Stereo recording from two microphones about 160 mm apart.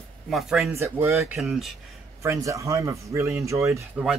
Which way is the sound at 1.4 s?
Centre (ahead or behind).